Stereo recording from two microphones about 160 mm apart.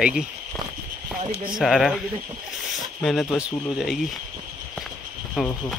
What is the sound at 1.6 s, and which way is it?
Speech, centre (ahead or behind).